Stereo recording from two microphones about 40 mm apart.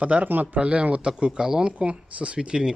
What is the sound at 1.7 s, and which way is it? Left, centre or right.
Speech, right.